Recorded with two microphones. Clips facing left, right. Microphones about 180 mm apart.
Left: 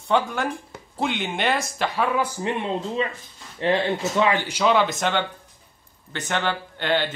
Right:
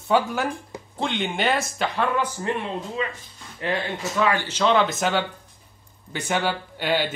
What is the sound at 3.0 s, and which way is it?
Speech, 30° left (ahead or behind).